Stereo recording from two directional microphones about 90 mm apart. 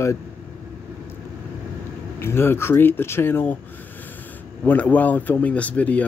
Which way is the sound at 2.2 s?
25° left (ahead or behind).